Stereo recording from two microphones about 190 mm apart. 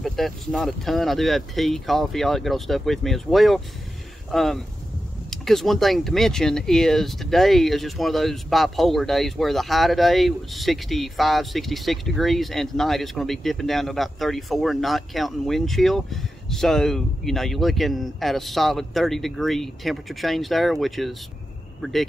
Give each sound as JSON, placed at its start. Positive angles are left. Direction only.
{"t": 0.0, "sound": "speech", "side_deg": 0}